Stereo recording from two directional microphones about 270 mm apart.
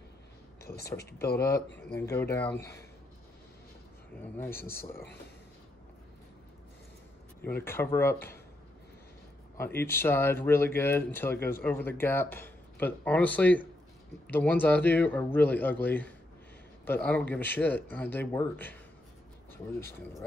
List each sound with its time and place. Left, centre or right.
0.9 s speech: left
2.0 s speech: centre
4.2 s speech: centre
4.9 s speech: left
7.4 s speech: centre
9.6 s speech: centre